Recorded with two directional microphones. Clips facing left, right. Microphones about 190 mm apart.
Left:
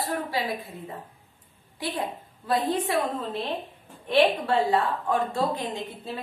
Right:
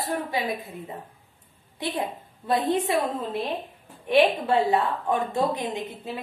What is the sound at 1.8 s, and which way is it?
A woman's voice, 20° right (ahead or behind).